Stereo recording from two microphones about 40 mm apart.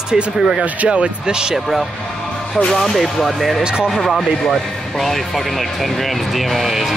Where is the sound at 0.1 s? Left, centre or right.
Centre.